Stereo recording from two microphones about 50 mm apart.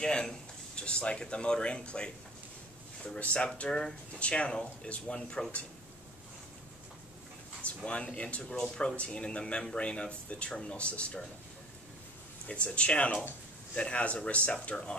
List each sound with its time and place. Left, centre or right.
0.0 s speech: centre
3.2 s speech: left
7.6 s speech: left
12.4 s speech: left